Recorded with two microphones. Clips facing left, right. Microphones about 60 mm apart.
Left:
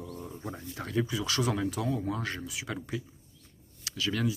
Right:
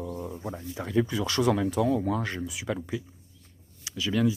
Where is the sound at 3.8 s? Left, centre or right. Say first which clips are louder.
Right 5 dB; right.